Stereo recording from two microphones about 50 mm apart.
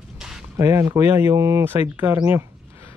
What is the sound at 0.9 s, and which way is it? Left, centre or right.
Speech, right.